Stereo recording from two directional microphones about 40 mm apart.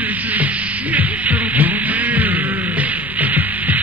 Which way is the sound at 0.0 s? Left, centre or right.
Right.